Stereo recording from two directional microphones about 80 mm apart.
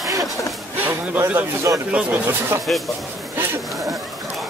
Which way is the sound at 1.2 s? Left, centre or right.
Right.